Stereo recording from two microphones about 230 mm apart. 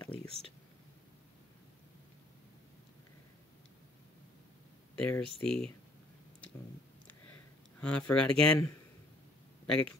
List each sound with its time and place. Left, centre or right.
0.0 s a sound: centre
4.9 s speech: centre
7.8 s speech: centre